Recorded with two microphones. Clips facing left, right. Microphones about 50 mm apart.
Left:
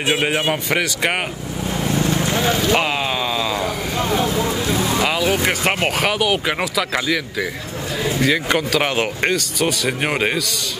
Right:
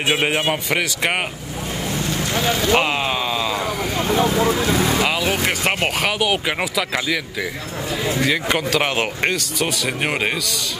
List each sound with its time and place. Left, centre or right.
0.0 s speech: centre
2.0 s vehicle: centre
2.3 s speech: centre
2.7 s speech: centre
8.3 s speech: centre